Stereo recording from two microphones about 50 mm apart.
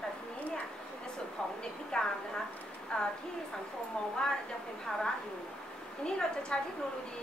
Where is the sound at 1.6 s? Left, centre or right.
Centre.